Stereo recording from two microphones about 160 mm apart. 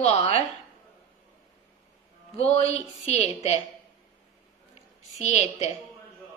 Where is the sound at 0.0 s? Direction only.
45° left (ahead or behind).